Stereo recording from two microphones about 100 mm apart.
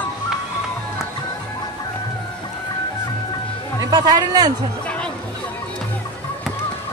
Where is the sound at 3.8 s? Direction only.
40° right (ahead or behind).